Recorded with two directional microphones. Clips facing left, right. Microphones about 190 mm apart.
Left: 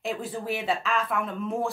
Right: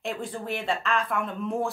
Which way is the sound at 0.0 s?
5° left (ahead or behind).